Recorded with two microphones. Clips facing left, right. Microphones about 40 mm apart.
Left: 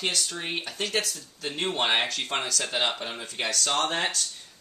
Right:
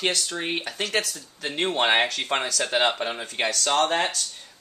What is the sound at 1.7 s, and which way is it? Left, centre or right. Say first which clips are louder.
Speech: right 4 dB; right.